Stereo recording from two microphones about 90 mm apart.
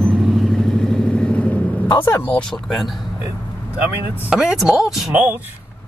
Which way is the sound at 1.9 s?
55° left (ahead or behind).